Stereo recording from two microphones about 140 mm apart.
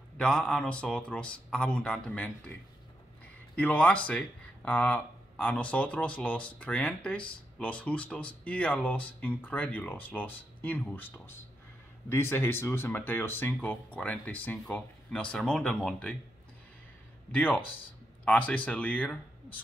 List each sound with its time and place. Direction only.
0.2 s speech: 5° left (ahead or behind)
3.5 s speech: 10° left (ahead or behind)
17.3 s speech: 10° left (ahead or behind)